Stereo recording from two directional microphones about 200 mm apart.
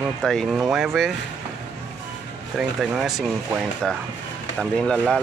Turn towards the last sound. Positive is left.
turn(degrees=5)  # may be behind; listen again after turning